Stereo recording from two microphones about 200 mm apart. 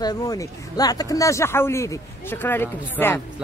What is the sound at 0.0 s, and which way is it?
Speech, 20° left (ahead or behind).